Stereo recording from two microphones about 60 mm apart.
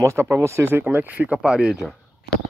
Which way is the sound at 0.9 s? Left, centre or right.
Right.